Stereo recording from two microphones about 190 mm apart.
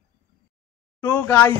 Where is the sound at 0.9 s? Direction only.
10° left (ahead or behind).